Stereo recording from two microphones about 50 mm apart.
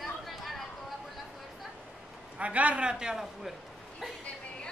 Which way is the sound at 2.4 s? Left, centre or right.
Right.